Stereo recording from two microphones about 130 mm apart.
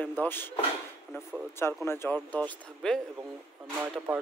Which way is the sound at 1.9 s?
15° left (ahead or behind).